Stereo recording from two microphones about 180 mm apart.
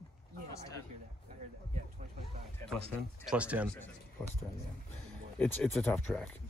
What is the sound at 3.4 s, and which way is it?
Speech, 10° right (ahead or behind).